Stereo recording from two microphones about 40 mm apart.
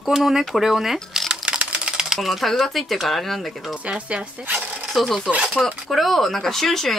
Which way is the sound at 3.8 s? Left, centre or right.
Right.